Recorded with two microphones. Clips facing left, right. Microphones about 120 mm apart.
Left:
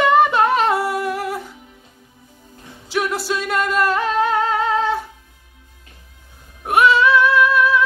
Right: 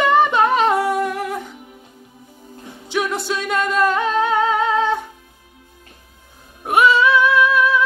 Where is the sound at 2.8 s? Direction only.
5° left (ahead or behind).